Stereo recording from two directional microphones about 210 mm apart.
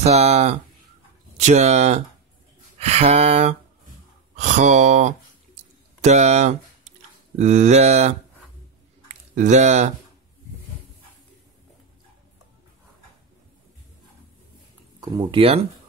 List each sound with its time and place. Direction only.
0.0 s speech: 30° right (ahead or behind)
15.3 s speech: 25° right (ahead or behind)